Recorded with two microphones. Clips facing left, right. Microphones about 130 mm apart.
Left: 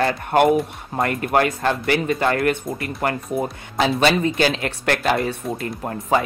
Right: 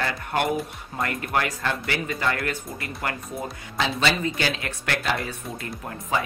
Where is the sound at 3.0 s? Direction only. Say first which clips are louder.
Left 8 dB; 50° left (ahead or behind).